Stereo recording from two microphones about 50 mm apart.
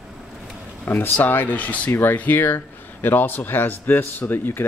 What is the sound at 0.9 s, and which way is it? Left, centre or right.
Speech, left.